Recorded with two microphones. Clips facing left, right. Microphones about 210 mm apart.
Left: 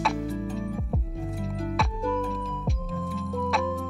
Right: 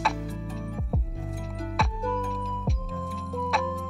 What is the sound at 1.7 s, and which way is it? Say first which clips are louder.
Music: left 1 dB; centre (ahead or behind).